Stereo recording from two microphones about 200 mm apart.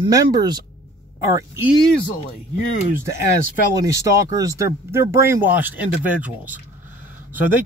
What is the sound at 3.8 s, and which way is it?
Speech, 15° right (ahead or behind).